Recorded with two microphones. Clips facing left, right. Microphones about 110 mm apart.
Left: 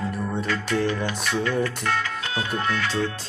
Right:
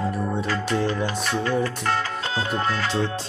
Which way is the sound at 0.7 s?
35° right (ahead or behind).